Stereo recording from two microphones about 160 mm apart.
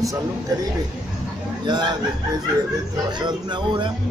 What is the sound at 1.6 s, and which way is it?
Speech, 30° right (ahead or behind).